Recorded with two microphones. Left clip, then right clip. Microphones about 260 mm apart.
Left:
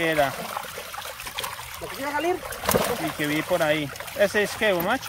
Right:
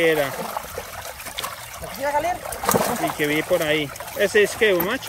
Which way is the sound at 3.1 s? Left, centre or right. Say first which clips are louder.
Right 2 dB; centre.